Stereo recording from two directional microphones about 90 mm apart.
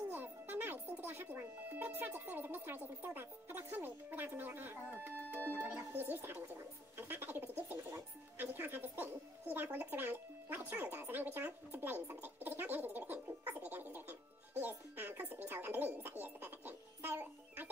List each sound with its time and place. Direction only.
0.1 s a child's voice: 20° right (ahead or behind)
7.0 s bird: 20° right (ahead or behind)
8.4 s speech: 20° right (ahead or behind)